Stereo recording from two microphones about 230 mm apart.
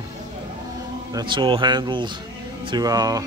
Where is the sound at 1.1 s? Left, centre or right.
Right.